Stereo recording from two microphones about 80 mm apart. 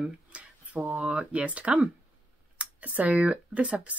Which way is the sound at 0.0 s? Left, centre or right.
Centre.